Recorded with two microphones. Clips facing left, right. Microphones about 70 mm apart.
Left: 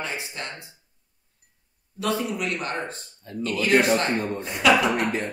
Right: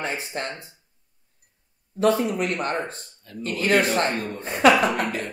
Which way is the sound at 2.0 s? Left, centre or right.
Right.